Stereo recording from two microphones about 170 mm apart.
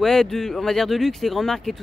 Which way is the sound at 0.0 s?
5° left (ahead or behind).